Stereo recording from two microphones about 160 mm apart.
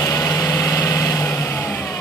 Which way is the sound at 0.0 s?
20° left (ahead or behind).